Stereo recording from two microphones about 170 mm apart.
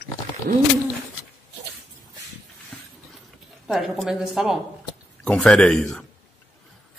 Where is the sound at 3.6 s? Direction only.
Centre (ahead or behind).